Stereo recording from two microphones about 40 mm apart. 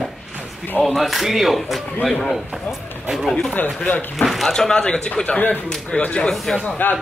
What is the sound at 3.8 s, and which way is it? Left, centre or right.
Speech, left.